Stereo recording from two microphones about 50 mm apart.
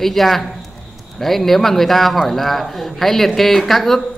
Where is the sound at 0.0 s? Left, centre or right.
Centre.